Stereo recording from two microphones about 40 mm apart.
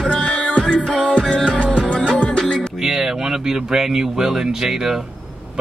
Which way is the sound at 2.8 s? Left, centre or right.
Centre.